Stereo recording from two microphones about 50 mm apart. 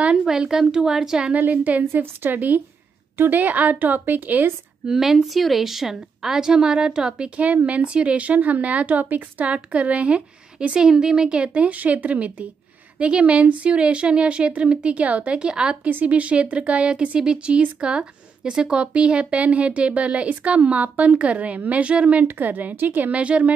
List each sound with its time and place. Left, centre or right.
0.2 s a woman's voice: centre
1.5 s a woman's voice: right
4.8 s speech: centre
15.9 s speech: right
22.2 s a woman's voice: right
23.2 s speech: right